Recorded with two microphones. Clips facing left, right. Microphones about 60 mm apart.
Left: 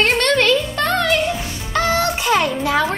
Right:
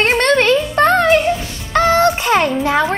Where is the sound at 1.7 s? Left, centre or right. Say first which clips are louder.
Right 6 dB; right.